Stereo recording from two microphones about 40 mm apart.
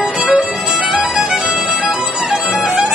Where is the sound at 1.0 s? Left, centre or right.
Right.